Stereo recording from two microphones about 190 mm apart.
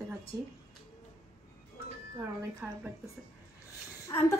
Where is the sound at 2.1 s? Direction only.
10° right (ahead or behind).